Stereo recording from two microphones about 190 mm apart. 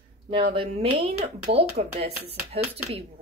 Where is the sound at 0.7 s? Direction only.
35° right (ahead or behind).